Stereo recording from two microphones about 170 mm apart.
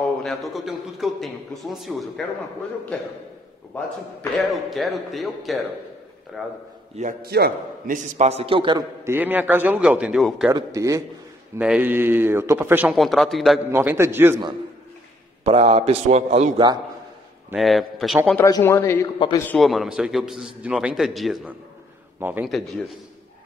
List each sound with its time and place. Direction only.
0.2 s a man's voice: centre (ahead or behind)
4.4 s a man's voice: centre (ahead or behind)
7.0 s a man's voice: 55° right (ahead or behind); by 8.8 s 30° right (ahead or behind)
9.0 s a man's voice: 10° right (ahead or behind)
10.5 s a man's voice: 20° right (ahead or behind)
11.5 s a man's voice: 10° right (ahead or behind)
13.7 s a man's voice: 15° right (ahead or behind)
15.4 s a man's voice: 35° right (ahead or behind)
17.6 s a man's voice: centre (ahead or behind)
18.4 s a man's voice: 15° left (ahead or behind)
19.1 s a man's voice: 30° left (ahead or behind)
19.4 s a man's voice: 5° left (ahead or behind)